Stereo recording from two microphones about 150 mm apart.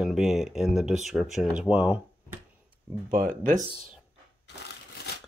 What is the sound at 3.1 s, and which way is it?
Speech, 65° right (ahead or behind).